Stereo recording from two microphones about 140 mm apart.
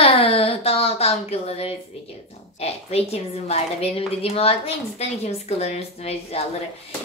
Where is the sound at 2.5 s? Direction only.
50° left (ahead or behind).